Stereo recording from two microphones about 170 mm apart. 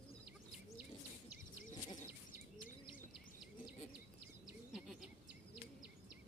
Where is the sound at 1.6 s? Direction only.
50° left (ahead or behind).